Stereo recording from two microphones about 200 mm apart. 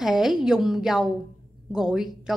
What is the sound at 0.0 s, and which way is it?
A woman's voice, centre (ahead or behind).